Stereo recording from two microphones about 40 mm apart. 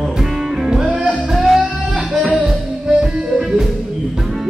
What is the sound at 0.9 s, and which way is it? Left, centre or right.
Music, right.